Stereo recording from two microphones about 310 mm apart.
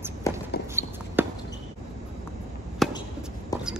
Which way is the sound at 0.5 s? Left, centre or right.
Left.